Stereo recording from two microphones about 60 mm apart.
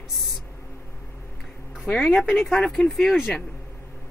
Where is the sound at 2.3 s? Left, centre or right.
Centre.